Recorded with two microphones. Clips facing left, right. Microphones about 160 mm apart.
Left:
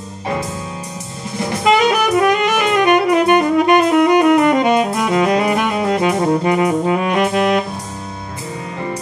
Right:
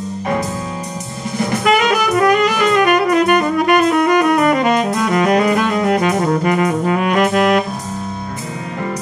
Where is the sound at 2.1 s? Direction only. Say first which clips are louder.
Right 1 dB; 25° left (ahead or behind).